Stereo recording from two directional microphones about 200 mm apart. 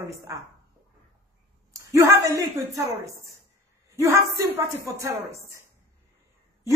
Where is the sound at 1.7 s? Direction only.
15° right (ahead or behind).